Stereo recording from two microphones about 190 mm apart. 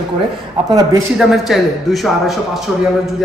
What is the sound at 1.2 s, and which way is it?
A man's voice, centre (ahead or behind).